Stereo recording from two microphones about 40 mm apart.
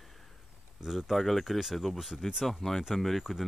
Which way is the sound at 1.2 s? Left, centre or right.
Centre.